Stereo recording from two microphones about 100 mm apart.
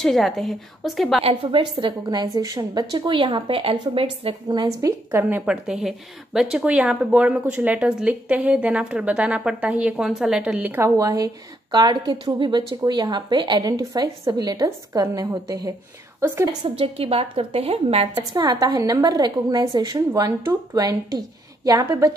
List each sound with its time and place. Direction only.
0.0 s a woman's voice: centre (ahead or behind)
1.2 s a woman's voice: 60° right (ahead or behind)
4.6 s a woman's voice: 30° right (ahead or behind)
5.2 s a woman's voice: 15° right (ahead or behind)
10.8 s a woman's voice: 30° right (ahead or behind)
16.6 s a woman's voice: 70° right (ahead or behind)
18.3 s a woman's voice: 45° right (ahead or behind)